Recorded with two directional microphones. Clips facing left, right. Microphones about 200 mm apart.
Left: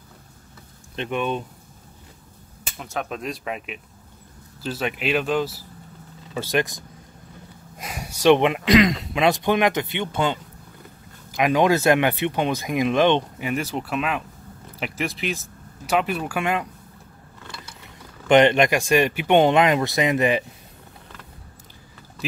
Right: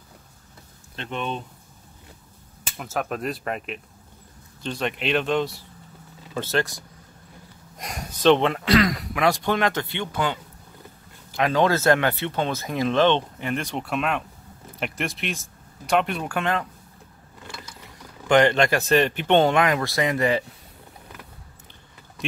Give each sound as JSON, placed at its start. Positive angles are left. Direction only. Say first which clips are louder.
{"t": 0.9, "sound": "speech", "louder": "left 5 dB", "side_deg": 10}
{"t": 2.8, "sound": "speech", "louder": "right 2 dB", "side_deg": 0}
{"t": 6.3, "sound": "speech", "louder": "left 2 dB", "side_deg": 15}
{"t": 7.7, "sound": "speech", "louder": "even", "side_deg": 5}
{"t": 18.3, "sound": "speech", "louder": "left 2 dB", "side_deg": 20}